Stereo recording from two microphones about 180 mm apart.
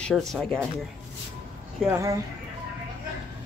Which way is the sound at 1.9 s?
15° right (ahead or behind).